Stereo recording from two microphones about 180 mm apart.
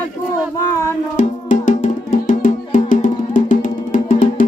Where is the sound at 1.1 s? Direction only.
45° left (ahead or behind).